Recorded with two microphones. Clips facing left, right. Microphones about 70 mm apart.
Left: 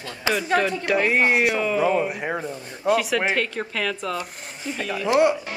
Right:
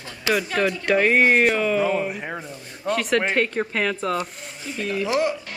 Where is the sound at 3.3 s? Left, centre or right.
Centre.